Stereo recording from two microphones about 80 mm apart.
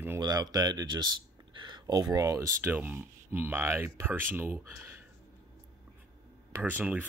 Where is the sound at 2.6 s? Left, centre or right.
Right.